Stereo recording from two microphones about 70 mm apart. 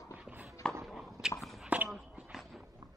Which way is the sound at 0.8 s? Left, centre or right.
Centre.